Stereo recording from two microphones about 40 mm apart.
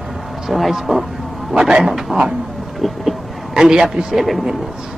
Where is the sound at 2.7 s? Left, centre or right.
Centre.